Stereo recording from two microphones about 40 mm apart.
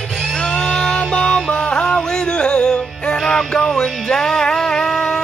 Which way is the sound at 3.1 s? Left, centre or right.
Centre.